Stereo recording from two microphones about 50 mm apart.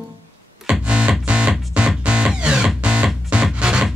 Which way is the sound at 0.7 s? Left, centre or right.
Right.